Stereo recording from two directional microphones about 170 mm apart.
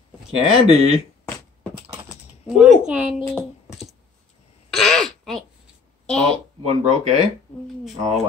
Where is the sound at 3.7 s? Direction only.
Centre (ahead or behind).